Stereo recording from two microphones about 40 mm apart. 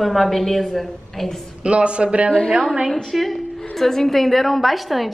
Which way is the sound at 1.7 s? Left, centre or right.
Right.